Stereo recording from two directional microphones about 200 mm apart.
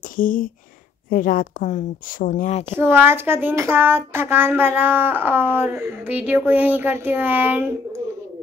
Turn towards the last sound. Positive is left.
turn(degrees=-10)  # may be behind; listen again after turning